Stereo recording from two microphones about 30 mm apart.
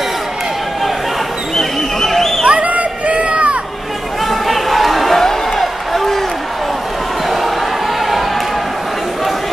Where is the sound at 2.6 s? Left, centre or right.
Right.